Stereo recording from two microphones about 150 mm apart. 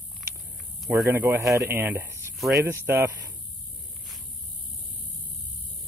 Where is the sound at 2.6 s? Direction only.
15° right (ahead or behind).